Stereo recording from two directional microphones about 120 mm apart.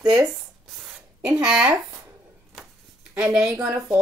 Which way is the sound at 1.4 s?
5° right (ahead or behind).